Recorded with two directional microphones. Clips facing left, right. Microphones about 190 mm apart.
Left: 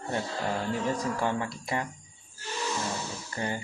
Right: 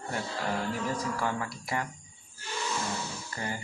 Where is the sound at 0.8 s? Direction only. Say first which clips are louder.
Left 3 dB; 20° left (ahead or behind).